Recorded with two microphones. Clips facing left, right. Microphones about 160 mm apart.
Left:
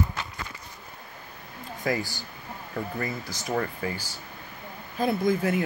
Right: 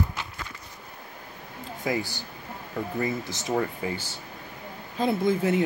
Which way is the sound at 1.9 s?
20° right (ahead or behind).